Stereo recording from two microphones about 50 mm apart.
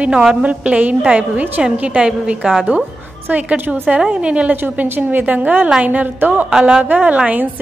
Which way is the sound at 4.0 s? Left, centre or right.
Right.